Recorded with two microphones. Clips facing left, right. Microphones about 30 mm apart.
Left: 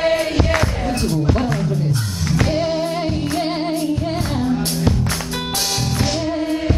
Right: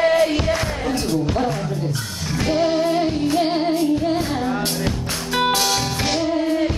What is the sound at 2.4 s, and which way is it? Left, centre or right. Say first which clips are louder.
Music: right 5 dB; centre.